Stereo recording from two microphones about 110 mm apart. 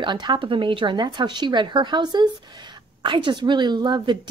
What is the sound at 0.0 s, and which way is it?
A woman's voice, 45° right (ahead or behind).